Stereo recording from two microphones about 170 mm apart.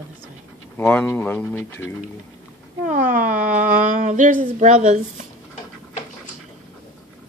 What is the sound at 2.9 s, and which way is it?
Speech, 50° right (ahead or behind).